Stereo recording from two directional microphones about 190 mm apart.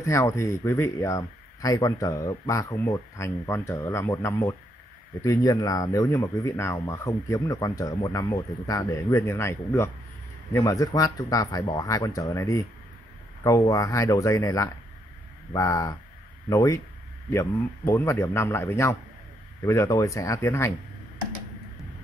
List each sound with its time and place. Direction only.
0.0 s speech: 15° left (ahead or behind)